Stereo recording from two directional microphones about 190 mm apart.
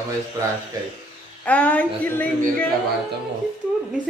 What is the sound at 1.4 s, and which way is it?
A woman's voice, 5° left (ahead or behind).